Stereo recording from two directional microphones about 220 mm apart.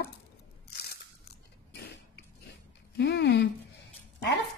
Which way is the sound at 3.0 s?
50° left (ahead or behind).